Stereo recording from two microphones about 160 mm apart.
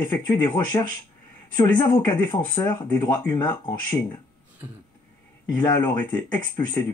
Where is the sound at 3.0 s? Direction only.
25° left (ahead or behind).